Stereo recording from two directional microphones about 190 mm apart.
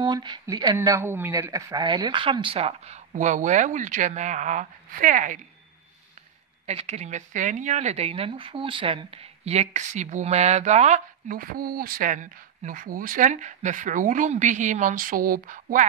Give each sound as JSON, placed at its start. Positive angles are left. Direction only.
{"t": 0.0, "sound": "speech", "side_deg": -20}
{"t": 6.6, "sound": "speech", "side_deg": -35}